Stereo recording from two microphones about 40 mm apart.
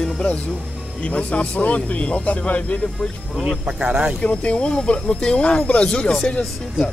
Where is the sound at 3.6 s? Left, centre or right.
Right.